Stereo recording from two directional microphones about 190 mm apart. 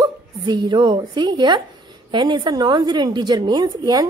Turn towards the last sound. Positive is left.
turn(degrees=-20)  # may be behind; listen again after turning